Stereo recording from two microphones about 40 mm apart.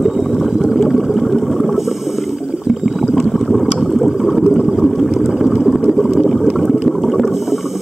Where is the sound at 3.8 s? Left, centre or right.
Centre.